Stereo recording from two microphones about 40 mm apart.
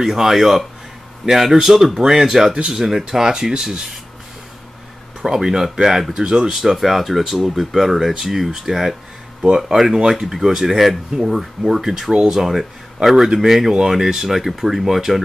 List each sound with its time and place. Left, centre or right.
0.0 s speech: centre
5.2 s speech: centre
6.5 s speech: centre
13.5 s speech: centre